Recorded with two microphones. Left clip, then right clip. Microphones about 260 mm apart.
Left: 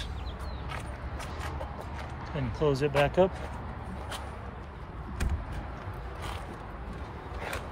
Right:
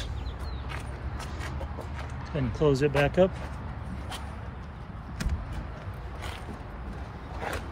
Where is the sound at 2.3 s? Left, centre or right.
Left.